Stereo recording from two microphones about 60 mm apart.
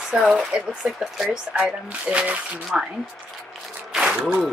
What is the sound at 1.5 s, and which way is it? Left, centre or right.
Speech, right.